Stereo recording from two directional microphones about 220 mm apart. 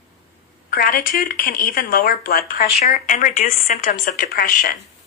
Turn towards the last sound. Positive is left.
turn(degrees=40)  # may be behind; listen again after turning